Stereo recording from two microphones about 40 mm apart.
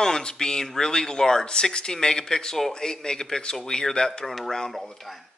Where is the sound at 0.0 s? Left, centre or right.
Centre.